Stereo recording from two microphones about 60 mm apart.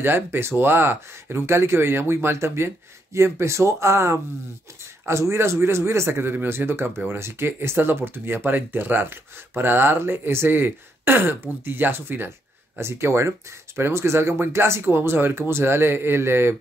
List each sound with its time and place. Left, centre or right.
0.0 s speech: right